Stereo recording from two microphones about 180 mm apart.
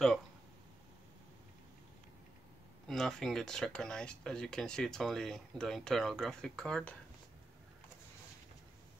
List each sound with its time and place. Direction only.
2.9 s speech: centre (ahead or behind)